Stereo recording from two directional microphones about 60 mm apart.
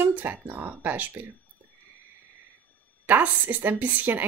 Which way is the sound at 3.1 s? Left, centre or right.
Right.